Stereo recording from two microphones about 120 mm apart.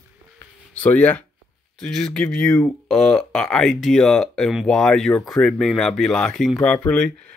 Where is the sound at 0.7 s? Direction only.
10° left (ahead or behind).